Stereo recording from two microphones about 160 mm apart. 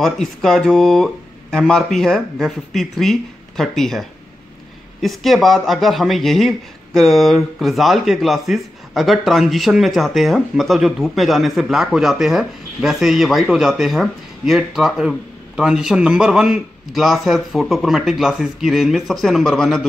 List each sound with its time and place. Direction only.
0.0 s speech: centre (ahead or behind)
5.0 s speech: centre (ahead or behind)